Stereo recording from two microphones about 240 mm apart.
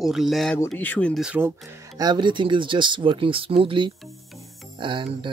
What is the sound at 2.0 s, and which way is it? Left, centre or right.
Speech, centre.